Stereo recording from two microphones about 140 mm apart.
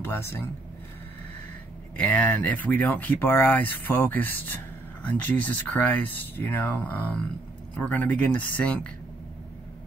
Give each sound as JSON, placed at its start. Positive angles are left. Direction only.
{"t": 0.0, "sound": "speech", "side_deg": 15}
{"t": 2.0, "sound": "speech", "side_deg": 10}